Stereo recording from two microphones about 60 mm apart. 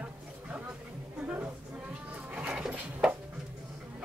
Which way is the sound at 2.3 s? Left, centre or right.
Centre.